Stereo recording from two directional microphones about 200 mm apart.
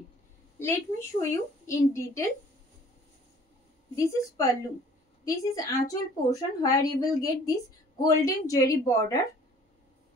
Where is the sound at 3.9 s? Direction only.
15° left (ahead or behind).